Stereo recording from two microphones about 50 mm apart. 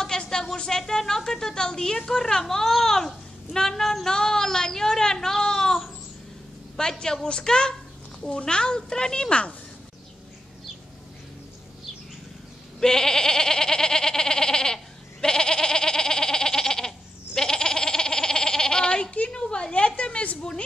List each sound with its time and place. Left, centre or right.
0.0 s a woman's voice: centre
12.8 s goat: centre